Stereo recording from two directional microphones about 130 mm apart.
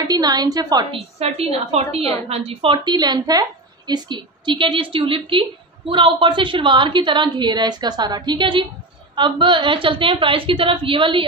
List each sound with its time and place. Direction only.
0.0 s a woman's voice: 30° right (ahead or behind)
1.3 s a woman's voice: 55° right (ahead or behind)